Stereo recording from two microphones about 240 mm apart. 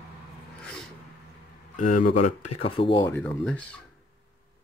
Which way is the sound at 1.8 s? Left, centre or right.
Left.